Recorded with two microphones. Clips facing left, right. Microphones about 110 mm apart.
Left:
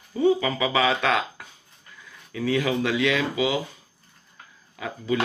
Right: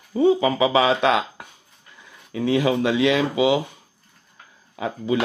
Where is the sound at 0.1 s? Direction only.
25° right (ahead or behind).